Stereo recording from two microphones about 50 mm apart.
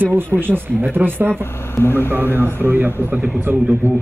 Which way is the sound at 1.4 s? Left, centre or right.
Left.